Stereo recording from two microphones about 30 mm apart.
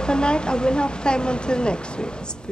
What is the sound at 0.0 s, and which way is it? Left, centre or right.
A woman's voice, left.